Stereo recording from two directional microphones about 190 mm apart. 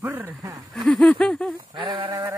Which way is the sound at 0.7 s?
Centre (ahead or behind).